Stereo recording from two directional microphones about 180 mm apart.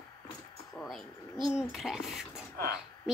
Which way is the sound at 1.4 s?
Centre (ahead or behind).